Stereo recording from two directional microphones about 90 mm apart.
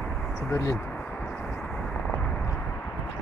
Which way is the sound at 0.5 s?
40° left (ahead or behind).